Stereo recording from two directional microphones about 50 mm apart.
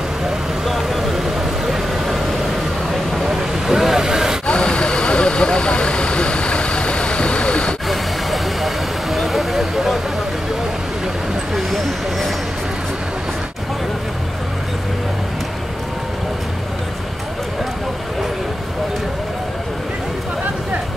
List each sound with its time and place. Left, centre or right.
0.7 s vehicle: centre
4.5 s vehicle: centre
7.9 s vehicle: centre
11.5 s vehicle: centre